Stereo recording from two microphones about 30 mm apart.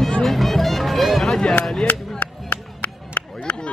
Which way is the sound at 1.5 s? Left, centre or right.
Centre.